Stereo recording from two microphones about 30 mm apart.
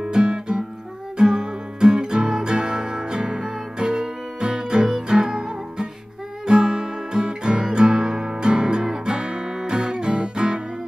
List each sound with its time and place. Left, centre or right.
0.0 s music: right